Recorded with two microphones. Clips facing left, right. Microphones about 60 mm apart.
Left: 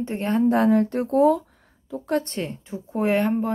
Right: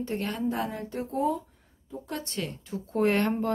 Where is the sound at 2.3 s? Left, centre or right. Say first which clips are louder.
Left 4 dB; left.